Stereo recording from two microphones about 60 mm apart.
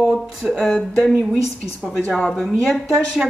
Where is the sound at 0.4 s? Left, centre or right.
Centre.